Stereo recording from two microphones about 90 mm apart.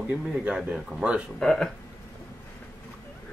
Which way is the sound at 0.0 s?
10° right (ahead or behind).